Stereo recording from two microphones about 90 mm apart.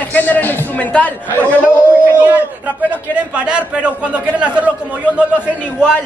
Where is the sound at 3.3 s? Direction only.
10° right (ahead or behind).